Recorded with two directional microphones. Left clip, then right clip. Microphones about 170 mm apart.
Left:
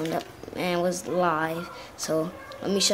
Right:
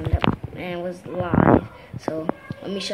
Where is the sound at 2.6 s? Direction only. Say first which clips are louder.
Left 5 dB; 15° left (ahead or behind).